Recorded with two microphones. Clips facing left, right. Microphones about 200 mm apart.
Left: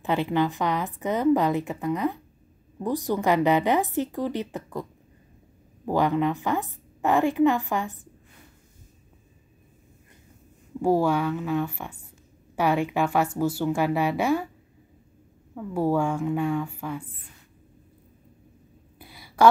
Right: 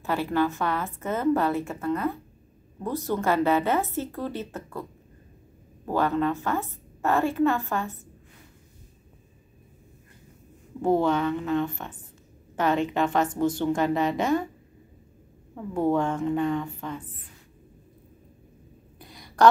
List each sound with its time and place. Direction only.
0.0 s a woman's voice: 20° left (ahead or behind)
5.9 s a woman's voice: 15° left (ahead or behind)
10.8 s a woman's voice: 10° left (ahead or behind)
15.5 s a woman's voice: 5° left (ahead or behind)
18.9 s a sound: 5° left (ahead or behind)